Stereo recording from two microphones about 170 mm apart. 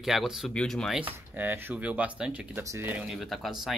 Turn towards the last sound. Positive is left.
turn(degrees=0)  # may be behind; listen again after turning